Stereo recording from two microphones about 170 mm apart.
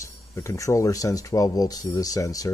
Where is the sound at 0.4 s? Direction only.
20° left (ahead or behind).